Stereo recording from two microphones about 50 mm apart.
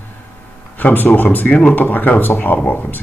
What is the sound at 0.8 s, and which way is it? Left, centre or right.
Speech, left.